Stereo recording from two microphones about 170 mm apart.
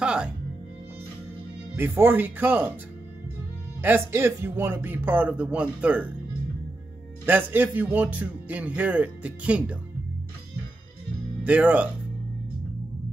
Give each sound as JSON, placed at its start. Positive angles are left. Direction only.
{"t": 0.0, "sound": "music", "side_deg": -5}
{"t": 1.8, "sound": "speech", "side_deg": -10}
{"t": 3.8, "sound": "speech", "side_deg": -10}
{"t": 7.2, "sound": "speech", "side_deg": -10}
{"t": 11.4, "sound": "speech", "side_deg": -10}